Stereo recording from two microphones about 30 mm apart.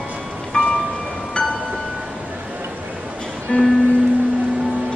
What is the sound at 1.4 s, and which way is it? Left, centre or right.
Music, left.